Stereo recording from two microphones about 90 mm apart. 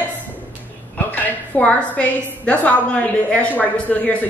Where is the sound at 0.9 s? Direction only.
15° left (ahead or behind).